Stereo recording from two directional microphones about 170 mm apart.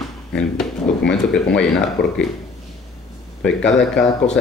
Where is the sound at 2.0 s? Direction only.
75° left (ahead or behind).